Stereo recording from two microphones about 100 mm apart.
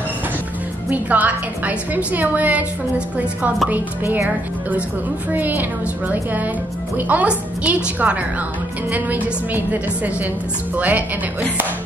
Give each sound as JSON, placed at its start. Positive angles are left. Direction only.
{"t": 0.8, "sound": "a woman's voice", "side_deg": -15}
{"t": 3.7, "sound": "a woman's voice", "side_deg": -20}
{"t": 5.3, "sound": "a woman's voice", "side_deg": -20}